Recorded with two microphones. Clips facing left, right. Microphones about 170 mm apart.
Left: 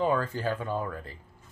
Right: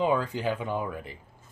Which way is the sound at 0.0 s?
15° right (ahead or behind).